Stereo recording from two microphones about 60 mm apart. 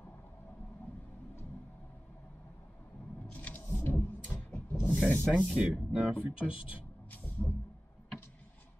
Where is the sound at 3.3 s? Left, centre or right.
Left.